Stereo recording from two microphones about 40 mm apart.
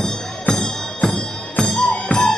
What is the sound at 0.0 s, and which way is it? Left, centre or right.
Music, centre.